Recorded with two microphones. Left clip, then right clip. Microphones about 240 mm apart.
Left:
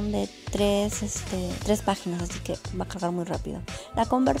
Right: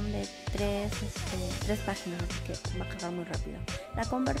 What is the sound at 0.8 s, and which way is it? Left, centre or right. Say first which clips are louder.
Speech: left 5 dB; centre.